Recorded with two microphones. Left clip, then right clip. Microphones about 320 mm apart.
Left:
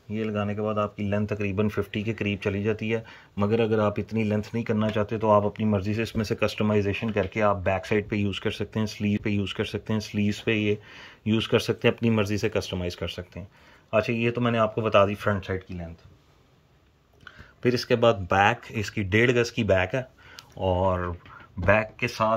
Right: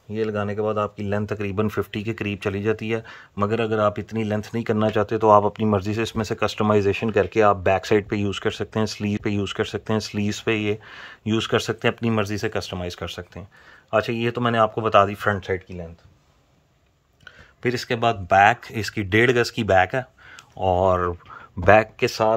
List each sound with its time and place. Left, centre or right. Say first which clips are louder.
0.1 s speech: right 5 dB; centre
17.2 s speech: right 1 dB; centre